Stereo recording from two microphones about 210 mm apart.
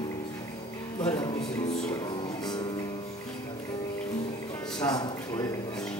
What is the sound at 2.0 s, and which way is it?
Music, 20° left (ahead or behind).